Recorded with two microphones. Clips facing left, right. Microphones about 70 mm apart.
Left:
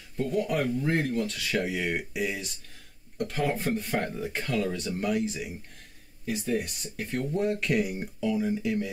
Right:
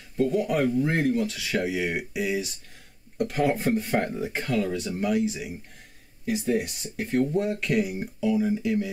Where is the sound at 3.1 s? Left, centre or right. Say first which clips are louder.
Right 4 dB; centre.